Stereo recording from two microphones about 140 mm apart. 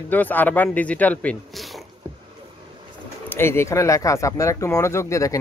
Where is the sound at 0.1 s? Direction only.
15° left (ahead or behind).